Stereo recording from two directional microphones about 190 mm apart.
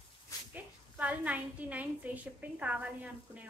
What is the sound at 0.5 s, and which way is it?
A woman's voice, 5° right (ahead or behind).